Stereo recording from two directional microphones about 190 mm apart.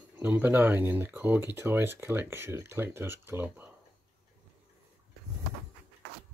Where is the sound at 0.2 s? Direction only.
10° right (ahead or behind).